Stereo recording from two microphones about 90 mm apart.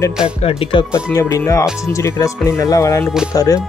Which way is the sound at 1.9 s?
35° left (ahead or behind).